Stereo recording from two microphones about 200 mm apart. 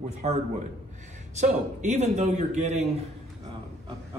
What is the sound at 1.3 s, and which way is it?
A man's voice, 35° right (ahead or behind).